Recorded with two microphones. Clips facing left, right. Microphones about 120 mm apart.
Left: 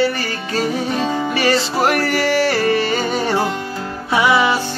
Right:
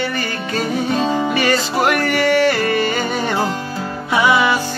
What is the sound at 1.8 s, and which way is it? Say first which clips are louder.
Music: even; 35° left (ahead or behind).